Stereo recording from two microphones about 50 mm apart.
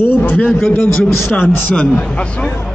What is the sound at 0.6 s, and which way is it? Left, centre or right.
Speech, left.